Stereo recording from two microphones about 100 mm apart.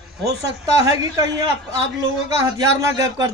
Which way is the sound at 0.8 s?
30° right (ahead or behind).